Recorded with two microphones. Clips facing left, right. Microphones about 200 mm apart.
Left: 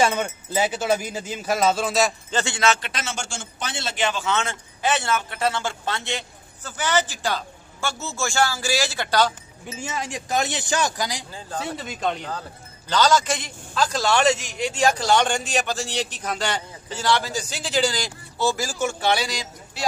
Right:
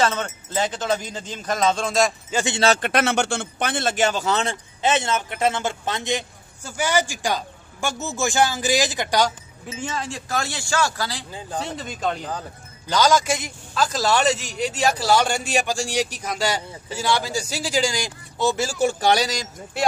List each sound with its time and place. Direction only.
0.0 s speech: 10° left (ahead or behind)
2.3 s speech: 20° right (ahead or behind)
2.8 s a man's voice: 60° right (ahead or behind); by 4.6 s 35° right (ahead or behind)
4.8 s a man's voice: 20° right (ahead or behind)
9.9 s speech: 15° left (ahead or behind)
11.6 s a man's voice: 5° left (ahead or behind); by 19.9 s 50° right (ahead or behind)